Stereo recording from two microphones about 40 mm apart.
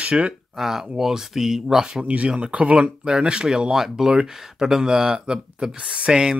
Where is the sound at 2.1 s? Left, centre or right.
Right.